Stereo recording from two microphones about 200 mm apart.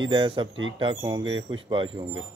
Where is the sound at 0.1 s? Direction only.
25° right (ahead or behind).